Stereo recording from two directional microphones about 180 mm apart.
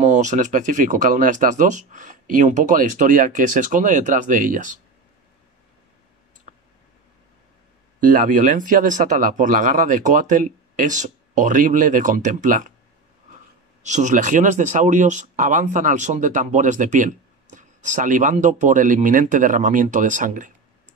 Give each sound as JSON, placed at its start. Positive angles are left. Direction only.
{"t": 0.0, "sound": "speech", "side_deg": -40}
{"t": 8.0, "sound": "speech", "side_deg": -45}
{"t": 13.8, "sound": "speech", "side_deg": -40}